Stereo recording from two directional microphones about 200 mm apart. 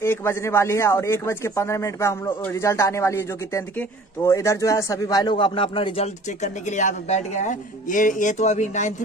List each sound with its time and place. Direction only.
0.0 s a man's voice: 10° left (ahead or behind); by 8.9 s 35° left (ahead or behind)